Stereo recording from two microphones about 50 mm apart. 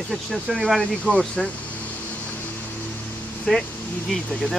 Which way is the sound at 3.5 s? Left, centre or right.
Centre.